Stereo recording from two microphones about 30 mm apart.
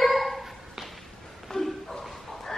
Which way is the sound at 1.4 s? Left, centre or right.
Centre.